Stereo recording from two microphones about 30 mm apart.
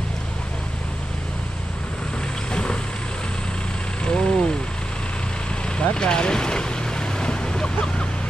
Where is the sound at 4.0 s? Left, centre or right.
Left.